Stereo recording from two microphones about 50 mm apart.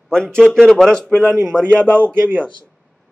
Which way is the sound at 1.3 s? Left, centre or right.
Right.